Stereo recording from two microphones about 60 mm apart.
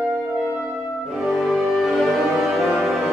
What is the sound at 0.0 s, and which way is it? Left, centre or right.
Music, centre.